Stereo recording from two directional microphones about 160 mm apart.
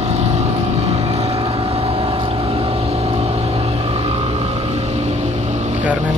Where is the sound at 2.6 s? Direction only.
35° right (ahead or behind).